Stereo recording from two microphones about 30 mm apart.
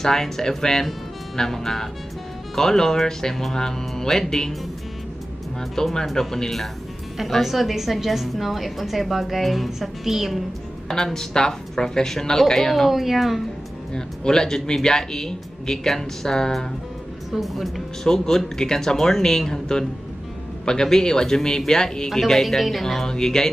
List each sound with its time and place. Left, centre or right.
0.0 s speech: centre
5.8 s speech: centre
7.2 s a woman's voice: centre
10.9 s speech: centre
11.3 s speech: left
12.9 s a woman's voice: centre
13.9 s speech: left
17.3 s a woman's voice: centre
18.0 s speech: centre
20.6 s speech: left
22.2 s speech: centre
23.0 s speech: left